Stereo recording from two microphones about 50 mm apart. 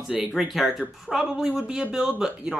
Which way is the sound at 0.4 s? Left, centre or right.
Centre.